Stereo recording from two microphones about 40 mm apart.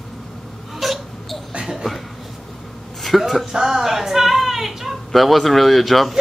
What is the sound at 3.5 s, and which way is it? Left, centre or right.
A woman's voice, centre.